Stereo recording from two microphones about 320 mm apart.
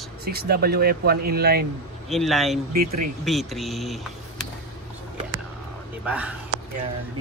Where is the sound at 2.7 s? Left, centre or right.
Right.